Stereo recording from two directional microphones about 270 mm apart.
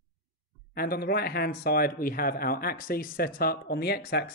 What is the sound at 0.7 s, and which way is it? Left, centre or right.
Speech, left.